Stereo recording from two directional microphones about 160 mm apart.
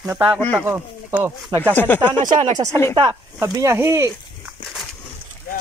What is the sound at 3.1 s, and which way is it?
Speech, 15° right (ahead or behind).